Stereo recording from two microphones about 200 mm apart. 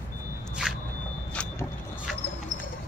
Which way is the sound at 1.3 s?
5° left (ahead or behind).